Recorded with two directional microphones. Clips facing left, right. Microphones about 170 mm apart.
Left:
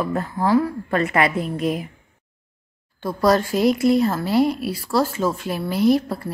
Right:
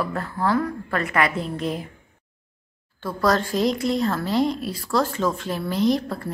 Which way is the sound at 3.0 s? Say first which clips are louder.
Left 3 dB; 10° left (ahead or behind).